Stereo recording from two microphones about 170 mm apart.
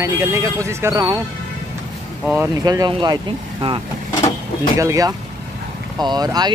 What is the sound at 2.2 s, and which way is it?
Speech, 15° right (ahead or behind).